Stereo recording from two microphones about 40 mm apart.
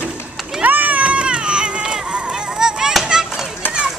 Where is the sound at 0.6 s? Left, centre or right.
Right.